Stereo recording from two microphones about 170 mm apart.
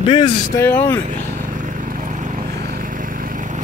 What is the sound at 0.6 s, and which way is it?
Speech, 15° left (ahead or behind).